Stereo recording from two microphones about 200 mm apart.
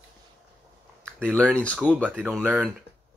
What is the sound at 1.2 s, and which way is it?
Speech, 5° left (ahead or behind).